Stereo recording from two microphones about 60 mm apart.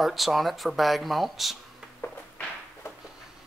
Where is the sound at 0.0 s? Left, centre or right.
Centre.